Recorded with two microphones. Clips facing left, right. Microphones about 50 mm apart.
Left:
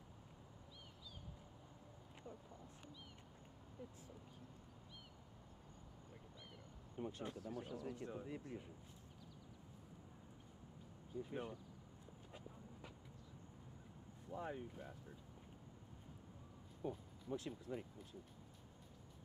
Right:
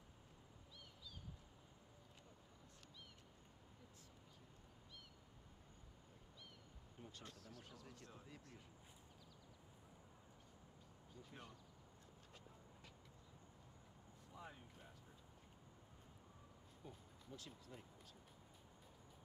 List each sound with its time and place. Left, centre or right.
7.0 s speech: left
11.2 s speech: left
12.3 s clip-clop: centre
14.3 s speech: left
16.8 s speech: left